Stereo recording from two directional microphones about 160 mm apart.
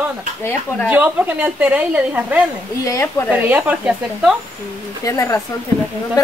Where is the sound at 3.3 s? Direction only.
10° right (ahead or behind).